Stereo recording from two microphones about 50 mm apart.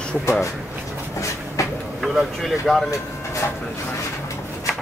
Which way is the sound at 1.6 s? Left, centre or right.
Left.